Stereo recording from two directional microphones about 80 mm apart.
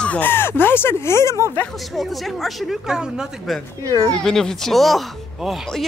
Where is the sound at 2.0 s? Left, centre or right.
Centre.